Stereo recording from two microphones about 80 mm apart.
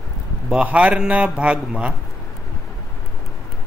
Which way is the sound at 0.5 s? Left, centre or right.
Centre.